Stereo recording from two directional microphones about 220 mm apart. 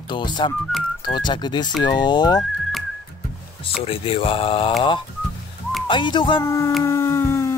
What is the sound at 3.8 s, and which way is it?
Speech, 25° left (ahead or behind).